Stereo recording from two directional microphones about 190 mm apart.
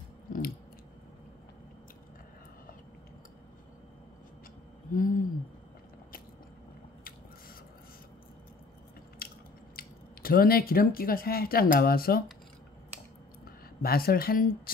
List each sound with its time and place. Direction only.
4.9 s a sound: 45° left (ahead or behind)
9.2 s biting: 50° left (ahead or behind)
9.8 s speech: 50° left (ahead or behind)
13.8 s speech: 50° left (ahead or behind)